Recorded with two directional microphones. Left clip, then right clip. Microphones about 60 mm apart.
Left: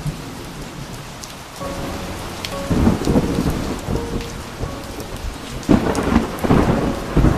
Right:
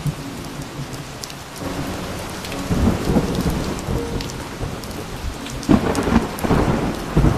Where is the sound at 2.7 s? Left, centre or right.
Right.